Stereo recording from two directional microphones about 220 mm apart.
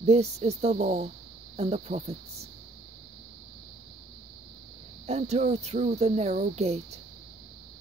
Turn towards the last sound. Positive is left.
turn(degrees=-30)  # may be behind; listen again after turning